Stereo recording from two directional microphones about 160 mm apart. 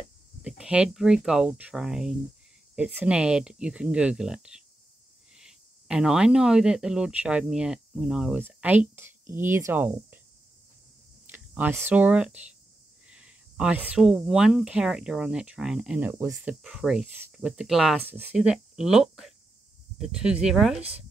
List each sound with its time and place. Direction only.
0.4 s speech: 5° right (ahead or behind)
11.2 s speech: 10° right (ahead or behind)